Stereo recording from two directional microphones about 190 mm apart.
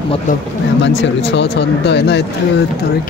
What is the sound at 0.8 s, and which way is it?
Speech, 70° left (ahead or behind).